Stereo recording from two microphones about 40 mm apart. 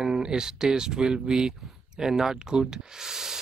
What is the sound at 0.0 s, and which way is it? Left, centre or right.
Speech, centre.